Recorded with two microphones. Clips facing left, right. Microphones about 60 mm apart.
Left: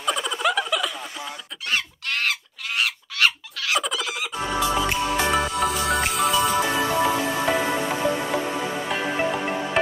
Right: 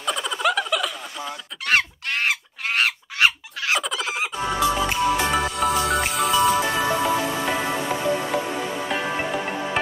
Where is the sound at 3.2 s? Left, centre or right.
Right.